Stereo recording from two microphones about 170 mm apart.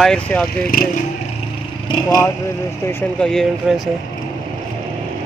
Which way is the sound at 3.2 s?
5° left (ahead or behind).